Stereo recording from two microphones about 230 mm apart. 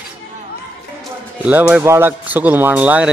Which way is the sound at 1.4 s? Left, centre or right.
Centre.